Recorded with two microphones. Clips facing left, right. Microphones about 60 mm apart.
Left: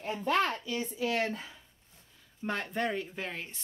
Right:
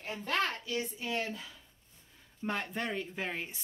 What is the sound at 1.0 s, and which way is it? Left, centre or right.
Speech, left.